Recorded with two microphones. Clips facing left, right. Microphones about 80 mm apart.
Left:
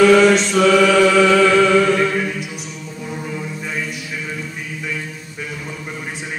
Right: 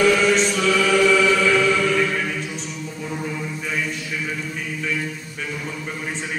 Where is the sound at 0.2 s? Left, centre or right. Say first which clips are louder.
Left 6 dB; left.